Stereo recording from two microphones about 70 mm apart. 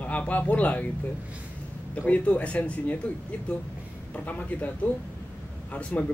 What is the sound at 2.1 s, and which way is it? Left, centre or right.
Speech, centre.